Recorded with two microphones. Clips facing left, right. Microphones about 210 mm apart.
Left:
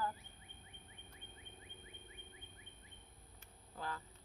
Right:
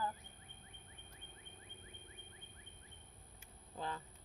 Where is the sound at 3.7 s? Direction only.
20° right (ahead or behind).